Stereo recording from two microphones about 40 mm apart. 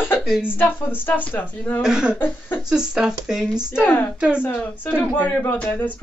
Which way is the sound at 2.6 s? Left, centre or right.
Centre.